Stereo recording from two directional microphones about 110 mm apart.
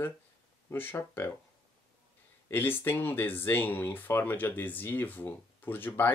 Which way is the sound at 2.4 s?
20° left (ahead or behind).